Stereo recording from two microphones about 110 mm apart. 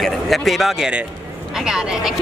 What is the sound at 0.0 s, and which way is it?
Speech, centre (ahead or behind).